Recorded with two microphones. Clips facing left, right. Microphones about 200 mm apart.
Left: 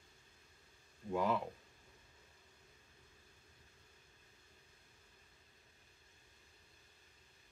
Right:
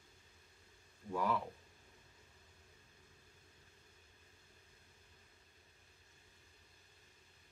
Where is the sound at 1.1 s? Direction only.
20° left (ahead or behind).